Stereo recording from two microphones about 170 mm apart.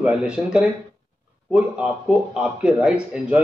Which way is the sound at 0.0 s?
5° right (ahead or behind).